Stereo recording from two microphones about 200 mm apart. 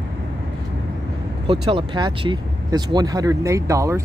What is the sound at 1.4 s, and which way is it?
Speech, 25° right (ahead or behind).